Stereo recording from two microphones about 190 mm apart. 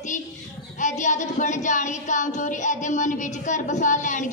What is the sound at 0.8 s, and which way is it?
Speech, 40° left (ahead or behind).